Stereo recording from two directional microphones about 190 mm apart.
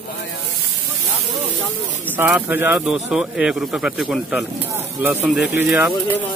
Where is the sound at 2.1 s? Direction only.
10° right (ahead or behind).